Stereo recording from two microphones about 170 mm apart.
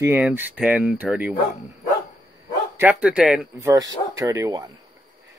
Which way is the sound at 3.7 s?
20° right (ahead or behind).